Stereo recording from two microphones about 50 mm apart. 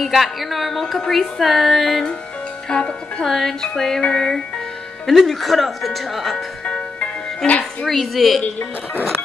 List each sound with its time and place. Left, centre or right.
0.0 s a woman's voice: centre
2.7 s speech: centre
3.3 s a woman's voice: centre
5.0 s a woman's voice: centre
6.6 s music: left
7.8 s a woman's voice: centre